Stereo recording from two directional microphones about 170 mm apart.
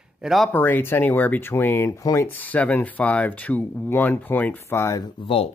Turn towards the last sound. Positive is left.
turn(degrees=35)  # may be behind; listen again after turning